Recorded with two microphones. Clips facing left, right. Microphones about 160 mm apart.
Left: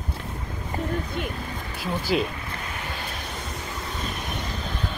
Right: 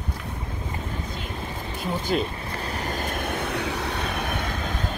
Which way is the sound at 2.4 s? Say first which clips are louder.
Right 4 dB; 35° right (ahead or behind).